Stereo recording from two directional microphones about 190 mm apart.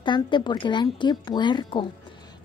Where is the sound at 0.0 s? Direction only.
25° left (ahead or behind).